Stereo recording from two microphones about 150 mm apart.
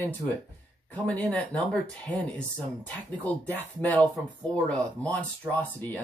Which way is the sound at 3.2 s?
10° left (ahead or behind).